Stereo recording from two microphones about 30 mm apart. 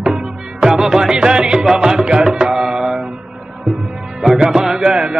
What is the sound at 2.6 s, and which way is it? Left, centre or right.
Mantra, right.